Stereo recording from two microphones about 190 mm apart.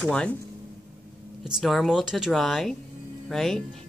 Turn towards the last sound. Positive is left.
turn(degrees=0)  # may be behind; listen again after turning